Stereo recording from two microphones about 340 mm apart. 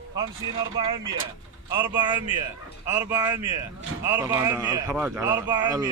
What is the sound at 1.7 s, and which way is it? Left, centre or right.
Speech, centre.